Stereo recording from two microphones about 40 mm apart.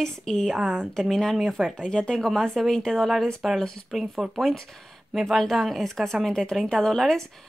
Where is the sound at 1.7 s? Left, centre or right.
Left.